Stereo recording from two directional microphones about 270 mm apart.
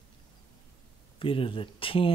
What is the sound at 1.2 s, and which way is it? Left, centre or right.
Speech, centre.